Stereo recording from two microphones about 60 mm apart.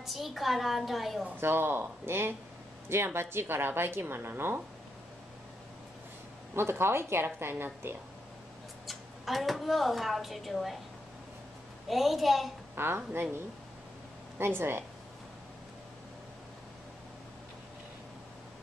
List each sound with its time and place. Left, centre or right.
0.0 s a woman's voice: centre
1.4 s a woman's voice: right
6.5 s a woman's voice: right
8.8 s speech: centre
11.9 s a woman's voice: centre
12.7 s a woman's voice: right
14.4 s a woman's voice: right